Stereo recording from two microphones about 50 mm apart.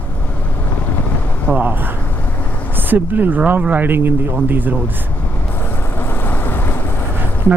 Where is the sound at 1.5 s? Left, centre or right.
Right.